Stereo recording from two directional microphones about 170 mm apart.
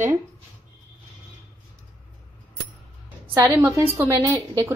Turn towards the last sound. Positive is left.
turn(degrees=-20)  # may be behind; listen again after turning